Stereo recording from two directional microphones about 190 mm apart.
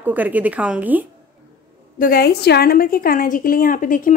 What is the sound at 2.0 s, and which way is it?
A woman's voice, 55° left (ahead or behind).